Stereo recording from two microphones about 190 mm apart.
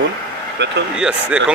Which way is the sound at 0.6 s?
65° right (ahead or behind).